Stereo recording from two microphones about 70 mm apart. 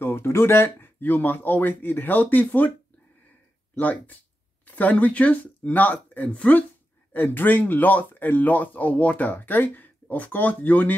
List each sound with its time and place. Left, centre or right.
0.0 s speech: left
3.7 s speech: left